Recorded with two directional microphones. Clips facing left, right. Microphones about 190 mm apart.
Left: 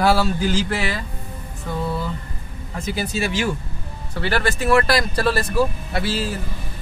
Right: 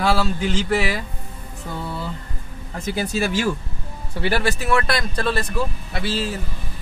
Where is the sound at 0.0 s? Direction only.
Centre (ahead or behind).